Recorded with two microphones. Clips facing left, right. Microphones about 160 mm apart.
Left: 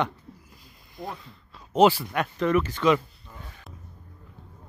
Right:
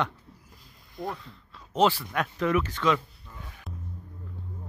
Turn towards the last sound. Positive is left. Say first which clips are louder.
# left 3 dB
turn(degrees=5)  # may be behind; listen again after turning